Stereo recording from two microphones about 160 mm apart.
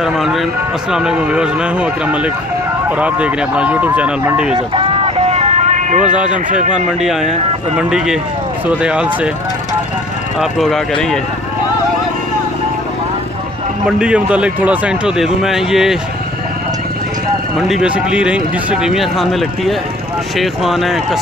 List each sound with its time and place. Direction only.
0.0 s speech: centre (ahead or behind)
4.6 s vehicle: 35° right (ahead or behind); by 6.1 s 50° right (ahead or behind)
6.3 s a man's voice: 50° right (ahead or behind)
7.0 s speech: 5° right (ahead or behind)
10.4 s speech: centre (ahead or behind)
13.8 s speech: 5° right (ahead or behind)
17.6 s speech: 5° right (ahead or behind)